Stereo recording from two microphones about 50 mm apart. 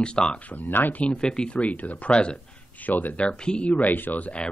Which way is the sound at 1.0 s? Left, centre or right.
Left.